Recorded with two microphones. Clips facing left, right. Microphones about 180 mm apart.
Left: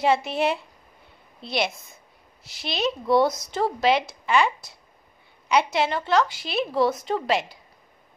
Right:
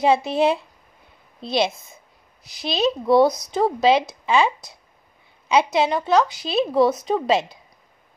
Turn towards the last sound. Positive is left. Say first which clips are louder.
# right 4 dB
turn(degrees=-20)  # may be behind; listen again after turning